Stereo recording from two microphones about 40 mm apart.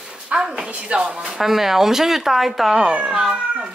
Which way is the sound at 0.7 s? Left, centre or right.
Right.